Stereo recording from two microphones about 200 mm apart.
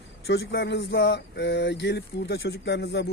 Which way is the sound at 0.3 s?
55° left (ahead or behind).